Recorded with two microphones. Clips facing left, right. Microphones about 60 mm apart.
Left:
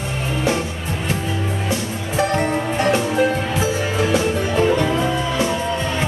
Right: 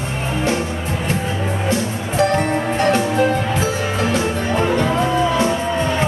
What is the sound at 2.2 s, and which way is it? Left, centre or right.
Music, left.